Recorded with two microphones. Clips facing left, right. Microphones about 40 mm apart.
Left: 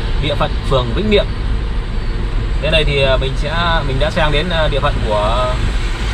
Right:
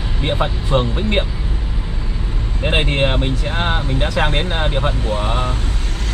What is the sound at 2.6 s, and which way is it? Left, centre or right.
Speech, centre.